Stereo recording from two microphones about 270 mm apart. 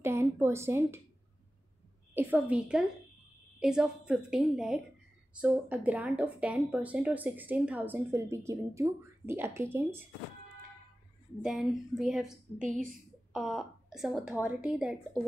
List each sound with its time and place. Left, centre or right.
0.0 s a sound: centre
2.1 s speech: centre
11.4 s speech: centre
12.5 s a woman's voice: right
13.3 s a woman's voice: centre